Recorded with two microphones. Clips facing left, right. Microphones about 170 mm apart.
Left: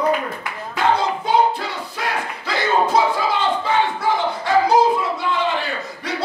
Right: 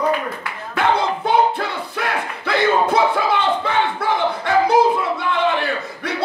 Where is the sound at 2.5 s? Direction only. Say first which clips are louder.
Right 2 dB; 55° right (ahead or behind).